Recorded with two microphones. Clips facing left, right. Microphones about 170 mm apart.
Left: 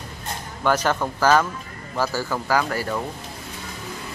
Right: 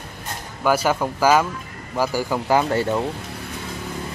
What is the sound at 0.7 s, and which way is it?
Speech, 10° right (ahead or behind).